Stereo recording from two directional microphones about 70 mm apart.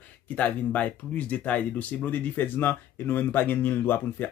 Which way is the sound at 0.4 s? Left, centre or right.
Left.